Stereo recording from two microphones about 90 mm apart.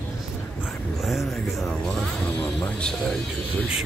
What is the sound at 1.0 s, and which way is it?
Speech, 5° right (ahead or behind).